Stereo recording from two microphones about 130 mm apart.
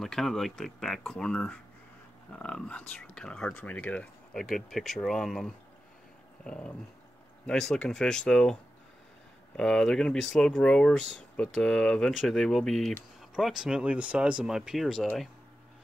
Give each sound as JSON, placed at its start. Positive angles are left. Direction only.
{"t": 0.0, "sound": "speech", "side_deg": 0}
{"t": 6.4, "sound": "a sound", "side_deg": 10}
{"t": 7.4, "sound": "speech", "side_deg": 5}
{"t": 9.6, "sound": "speech", "side_deg": 5}